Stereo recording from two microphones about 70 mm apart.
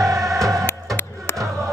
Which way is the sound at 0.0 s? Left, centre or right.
Right.